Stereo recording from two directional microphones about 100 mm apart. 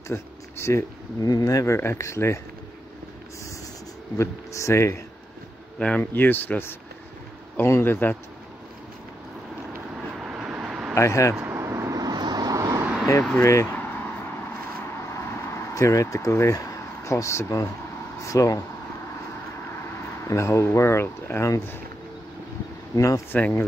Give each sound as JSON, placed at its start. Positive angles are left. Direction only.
{"t": 0.1, "sound": "speech", "side_deg": 25}
{"t": 4.2, "sound": "speech", "side_deg": 30}
{"t": 5.8, "sound": "speech", "side_deg": 15}
{"t": 10.1, "sound": "vehicle", "side_deg": -5}
{"t": 11.0, "sound": "speech", "side_deg": 30}
{"t": 11.4, "sound": "vehicle", "side_deg": -25}
{"t": 13.4, "sound": "speech", "side_deg": 30}
{"t": 13.7, "sound": "vehicle", "side_deg": 20}
{"t": 18.2, "sound": "speech", "side_deg": 35}
{"t": 19.7, "sound": "speech", "side_deg": 25}
{"t": 22.9, "sound": "speech", "side_deg": 30}